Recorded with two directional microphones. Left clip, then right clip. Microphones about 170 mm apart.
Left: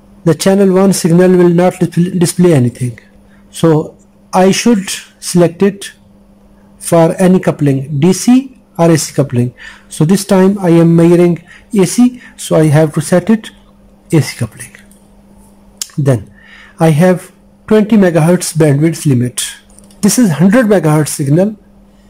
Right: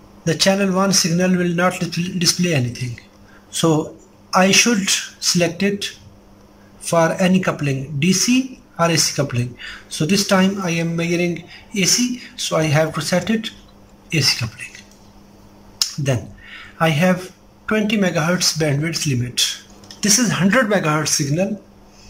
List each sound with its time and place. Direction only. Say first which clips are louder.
0.3 s speech: left 8 dB; 35° left (ahead or behind)
16.0 s speech: left 9 dB; 35° left (ahead or behind)